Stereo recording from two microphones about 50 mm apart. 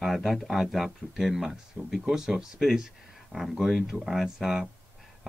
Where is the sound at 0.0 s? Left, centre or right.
Centre.